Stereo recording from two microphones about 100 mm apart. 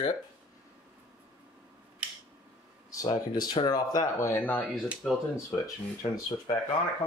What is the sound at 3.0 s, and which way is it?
Speech, 40° left (ahead or behind).